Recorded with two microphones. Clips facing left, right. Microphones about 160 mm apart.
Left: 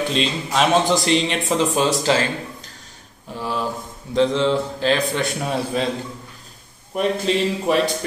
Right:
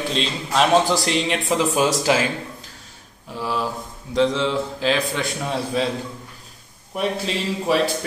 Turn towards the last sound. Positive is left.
turn(degrees=0)  # may be behind; listen again after turning